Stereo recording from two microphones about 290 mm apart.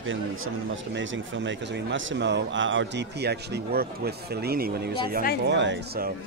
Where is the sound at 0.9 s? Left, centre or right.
Right.